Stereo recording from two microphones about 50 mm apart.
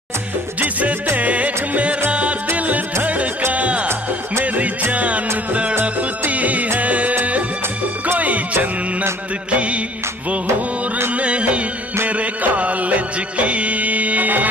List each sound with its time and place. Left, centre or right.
0.6 s music: right
4.9 s music: right
9.5 s music of bollywood: right
11.1 s music: right